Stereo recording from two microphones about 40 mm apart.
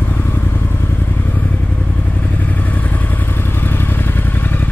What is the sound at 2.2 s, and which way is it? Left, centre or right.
Vehicle, left.